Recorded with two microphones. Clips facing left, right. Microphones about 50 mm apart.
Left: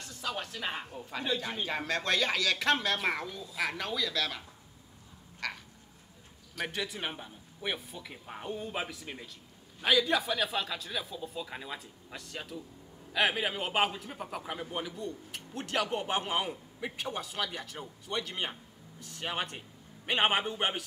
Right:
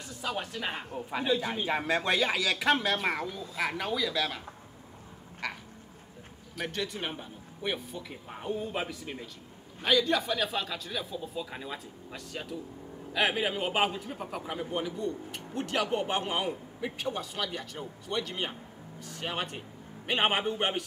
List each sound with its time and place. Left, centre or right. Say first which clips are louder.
0.0 s a man's voice: right 2 dB; centre
5.4 s frog: right 1 dB; centre
6.6 s a man's voice: right 1 dB; centre